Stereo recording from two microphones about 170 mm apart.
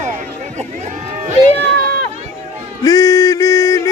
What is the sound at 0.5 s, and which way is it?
Speech, 40° right (ahead or behind).